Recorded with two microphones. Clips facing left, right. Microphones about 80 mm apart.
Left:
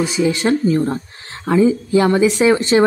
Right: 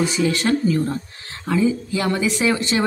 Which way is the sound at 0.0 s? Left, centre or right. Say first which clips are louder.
Left 3 dB; centre.